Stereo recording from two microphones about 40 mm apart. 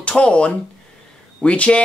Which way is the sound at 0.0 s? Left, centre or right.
Left.